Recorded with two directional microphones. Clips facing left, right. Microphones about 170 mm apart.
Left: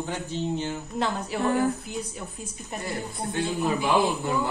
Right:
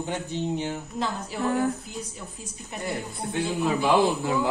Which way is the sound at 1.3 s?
65° left (ahead or behind).